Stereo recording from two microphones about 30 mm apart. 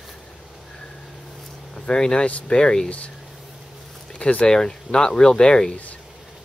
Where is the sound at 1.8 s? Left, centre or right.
Left.